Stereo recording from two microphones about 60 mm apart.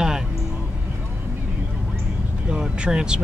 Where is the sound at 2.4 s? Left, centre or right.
Centre.